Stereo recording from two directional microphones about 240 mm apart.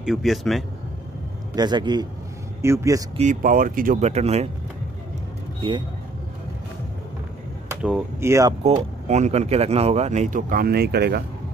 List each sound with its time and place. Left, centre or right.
0.0 s a man's voice: centre
1.5 s a man's voice: centre
3.2 s speech: right
5.6 s speech: centre
7.7 s speech: centre
9.0 s speech: right